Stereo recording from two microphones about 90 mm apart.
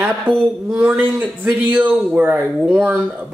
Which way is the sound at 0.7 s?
15° right (ahead or behind).